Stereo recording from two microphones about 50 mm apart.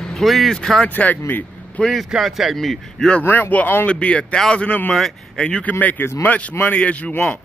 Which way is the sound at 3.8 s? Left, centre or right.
Left.